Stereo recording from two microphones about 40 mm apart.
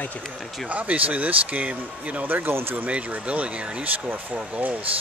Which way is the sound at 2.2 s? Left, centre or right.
Right.